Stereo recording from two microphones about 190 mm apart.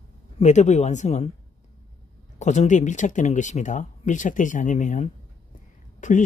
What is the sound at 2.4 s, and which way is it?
Speech, 40° left (ahead or behind).